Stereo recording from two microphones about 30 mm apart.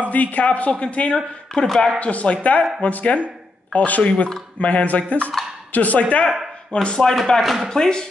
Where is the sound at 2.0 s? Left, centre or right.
Left.